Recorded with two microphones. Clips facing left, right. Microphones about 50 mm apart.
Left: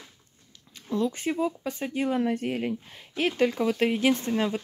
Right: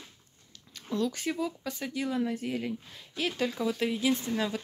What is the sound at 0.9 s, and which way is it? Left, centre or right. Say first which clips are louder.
Speech: left 3 dB; left.